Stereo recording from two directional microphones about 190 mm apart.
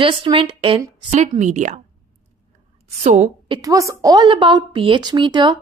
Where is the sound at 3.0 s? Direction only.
40° right (ahead or behind).